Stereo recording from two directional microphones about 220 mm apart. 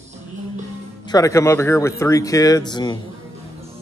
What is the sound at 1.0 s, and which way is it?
Speech, 15° left (ahead or behind).